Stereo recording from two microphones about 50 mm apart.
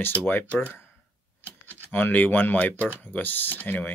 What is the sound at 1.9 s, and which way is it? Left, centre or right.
Speech, left.